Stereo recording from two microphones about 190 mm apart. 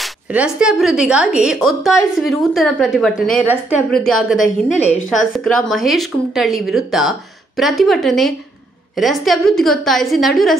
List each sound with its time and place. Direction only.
0.0 s speech: 5° right (ahead or behind)
4.4 s a woman's voice: 40° left (ahead or behind)
5.4 s speech: centre (ahead or behind)